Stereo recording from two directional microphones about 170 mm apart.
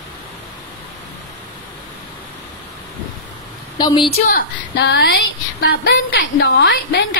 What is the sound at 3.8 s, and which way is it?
Speech, 30° left (ahead or behind).